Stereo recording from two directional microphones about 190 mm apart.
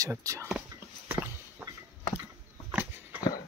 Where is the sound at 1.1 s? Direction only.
10° right (ahead or behind).